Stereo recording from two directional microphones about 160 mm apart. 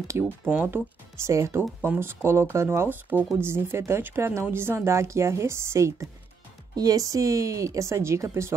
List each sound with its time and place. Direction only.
0.1 s speech: 15° right (ahead or behind)